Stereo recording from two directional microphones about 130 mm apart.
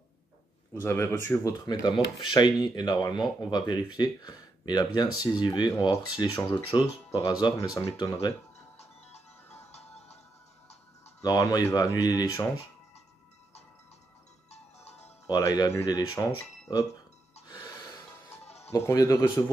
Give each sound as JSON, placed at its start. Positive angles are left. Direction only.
{"t": 0.8, "sound": "speech", "side_deg": 20}
{"t": 8.7, "sound": "music", "side_deg": 55}
{"t": 11.2, "sound": "speech", "side_deg": 25}
{"t": 14.9, "sound": "music", "side_deg": 55}
{"t": 15.2, "sound": "speech", "side_deg": 30}
{"t": 17.5, "sound": "music", "side_deg": 30}
{"t": 18.7, "sound": "speech", "side_deg": 20}